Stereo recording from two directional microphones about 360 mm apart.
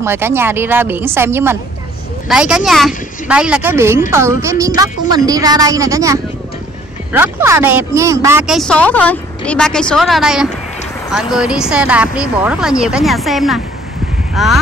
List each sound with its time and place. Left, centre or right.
0.0 s speech: centre